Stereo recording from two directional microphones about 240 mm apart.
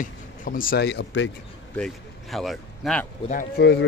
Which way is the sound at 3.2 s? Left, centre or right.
Left.